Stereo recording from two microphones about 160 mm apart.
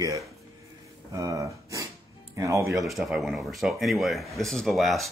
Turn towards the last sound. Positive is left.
turn(degrees=0)  # may be behind; listen again after turning